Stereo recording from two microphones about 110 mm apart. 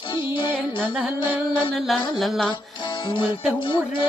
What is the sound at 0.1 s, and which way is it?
Music, 50° left (ahead or behind).